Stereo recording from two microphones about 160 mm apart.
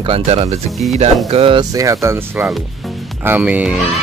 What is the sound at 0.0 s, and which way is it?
Speech, 35° right (ahead or behind).